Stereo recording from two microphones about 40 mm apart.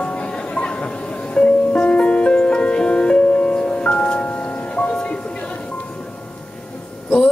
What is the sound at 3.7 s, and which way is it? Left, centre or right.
Music, left.